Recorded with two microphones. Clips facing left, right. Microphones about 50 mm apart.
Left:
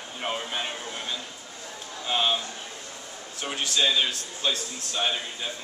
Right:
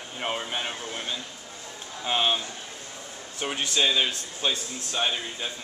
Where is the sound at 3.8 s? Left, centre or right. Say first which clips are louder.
Even; centre.